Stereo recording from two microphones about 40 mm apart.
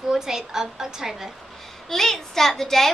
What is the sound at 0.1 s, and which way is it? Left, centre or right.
A woman's voice, centre.